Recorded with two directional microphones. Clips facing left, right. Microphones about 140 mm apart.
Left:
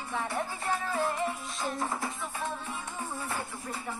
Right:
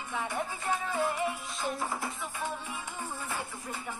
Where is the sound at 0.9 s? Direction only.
Centre (ahead or behind).